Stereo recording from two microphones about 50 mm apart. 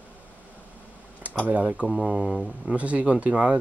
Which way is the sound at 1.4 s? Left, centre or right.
Right.